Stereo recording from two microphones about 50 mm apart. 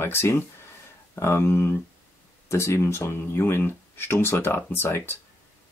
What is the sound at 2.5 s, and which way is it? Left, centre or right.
Speech, left.